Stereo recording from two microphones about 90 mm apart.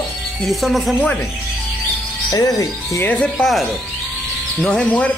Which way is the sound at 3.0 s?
15° left (ahead or behind).